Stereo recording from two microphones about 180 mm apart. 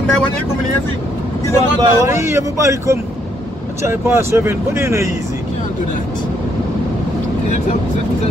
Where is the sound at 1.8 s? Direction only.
15° right (ahead or behind).